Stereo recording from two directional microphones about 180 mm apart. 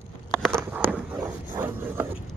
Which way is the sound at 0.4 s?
5° left (ahead or behind).